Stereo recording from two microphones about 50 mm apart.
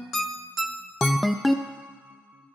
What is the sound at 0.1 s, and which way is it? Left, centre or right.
Music, centre.